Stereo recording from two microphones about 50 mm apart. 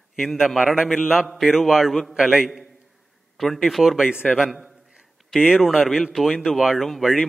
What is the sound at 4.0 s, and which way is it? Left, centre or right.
Speech, centre.